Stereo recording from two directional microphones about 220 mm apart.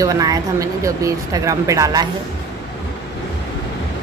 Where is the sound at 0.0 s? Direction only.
15° right (ahead or behind).